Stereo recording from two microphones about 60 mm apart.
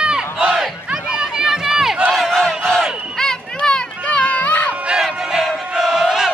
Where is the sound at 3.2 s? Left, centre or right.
Centre; by 4.7 s left.